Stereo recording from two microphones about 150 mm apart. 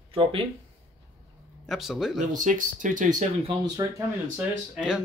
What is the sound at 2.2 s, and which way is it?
Speech, 55° right (ahead or behind).